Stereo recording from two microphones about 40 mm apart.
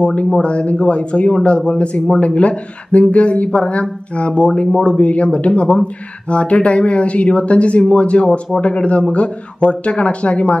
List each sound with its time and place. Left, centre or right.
0.0 s speech: left